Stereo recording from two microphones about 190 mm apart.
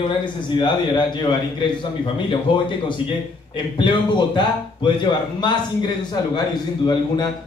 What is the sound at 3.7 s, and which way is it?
A man's voice, 25° left (ahead or behind).